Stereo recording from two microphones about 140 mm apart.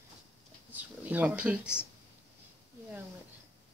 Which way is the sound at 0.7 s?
10° right (ahead or behind).